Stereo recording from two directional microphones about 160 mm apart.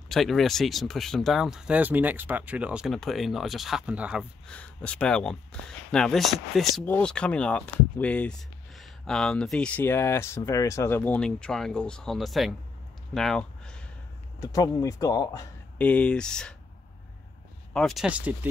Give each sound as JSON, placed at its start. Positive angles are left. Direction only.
{"t": 0.1, "sound": "speech", "side_deg": 0}
{"t": 4.5, "sound": "speech", "side_deg": 5}
{"t": 14.4, "sound": "speech", "side_deg": 20}
{"t": 15.8, "sound": "speech", "side_deg": 5}
{"t": 17.7, "sound": "speech", "side_deg": 0}